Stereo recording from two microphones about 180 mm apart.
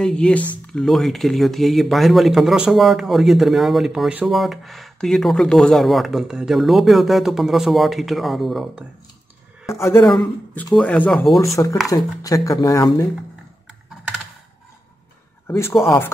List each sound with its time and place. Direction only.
0.0 s speech: 5° left (ahead or behind)
9.8 s speech: 15° left (ahead or behind)
11.5 s speech: 20° left (ahead or behind)
15.4 s speech: 15° left (ahead or behind)